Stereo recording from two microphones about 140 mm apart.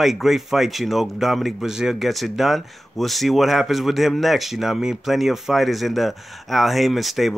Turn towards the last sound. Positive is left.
turn(degrees=0)  # may be behind; listen again after turning